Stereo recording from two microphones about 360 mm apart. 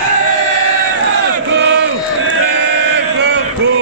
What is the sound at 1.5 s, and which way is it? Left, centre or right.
Crowd, right.